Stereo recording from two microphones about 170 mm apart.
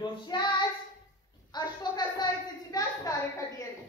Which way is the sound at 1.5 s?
25° left (ahead or behind).